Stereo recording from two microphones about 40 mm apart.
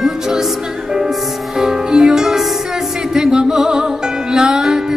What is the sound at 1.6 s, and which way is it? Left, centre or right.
Music, centre.